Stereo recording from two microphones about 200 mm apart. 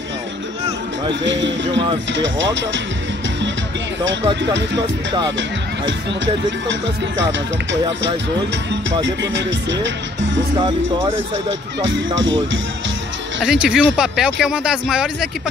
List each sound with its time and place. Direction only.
1.2 s music: 65° right (ahead or behind)
2.1 s speech: 65° right (ahead or behind)
4.2 s speech: 15° right (ahead or behind)
9.0 s music: 65° right (ahead or behind)
13.4 s speech: 5° right (ahead or behind)